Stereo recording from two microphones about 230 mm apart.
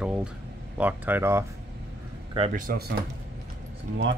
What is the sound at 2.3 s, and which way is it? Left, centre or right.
Speech, right.